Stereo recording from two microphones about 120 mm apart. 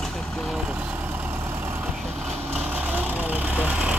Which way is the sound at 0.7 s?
10° right (ahead or behind).